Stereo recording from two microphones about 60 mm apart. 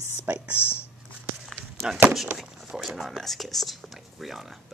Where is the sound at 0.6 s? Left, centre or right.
Left.